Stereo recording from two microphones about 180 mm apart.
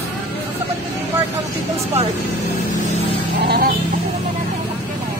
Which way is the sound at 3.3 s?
65° right (ahead or behind).